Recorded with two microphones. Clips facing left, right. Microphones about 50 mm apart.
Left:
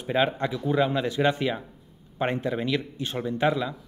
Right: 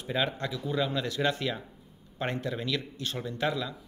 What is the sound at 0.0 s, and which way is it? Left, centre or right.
Speech, left.